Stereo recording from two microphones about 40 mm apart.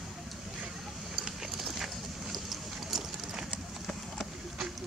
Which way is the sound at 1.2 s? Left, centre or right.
Centre.